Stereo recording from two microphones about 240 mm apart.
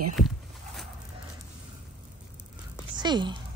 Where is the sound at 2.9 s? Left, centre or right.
Centre.